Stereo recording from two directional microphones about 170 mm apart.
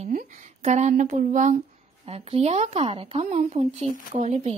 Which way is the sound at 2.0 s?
35° right (ahead or behind).